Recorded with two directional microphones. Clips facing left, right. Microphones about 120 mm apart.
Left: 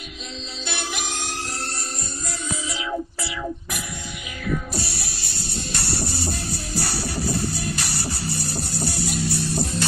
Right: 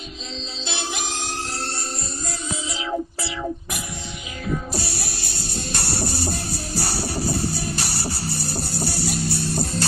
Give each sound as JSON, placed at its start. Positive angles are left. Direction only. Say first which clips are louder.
{"t": 0.7, "sound": "music", "louder": "right 1 dB", "side_deg": -30}
{"t": 2.7, "sound": "music", "louder": "right 3 dB", "side_deg": -30}
{"t": 4.7, "sound": "music", "louder": "right 2 dB", "side_deg": -40}